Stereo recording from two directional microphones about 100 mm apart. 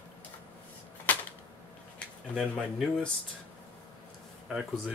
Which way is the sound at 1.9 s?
5° left (ahead or behind).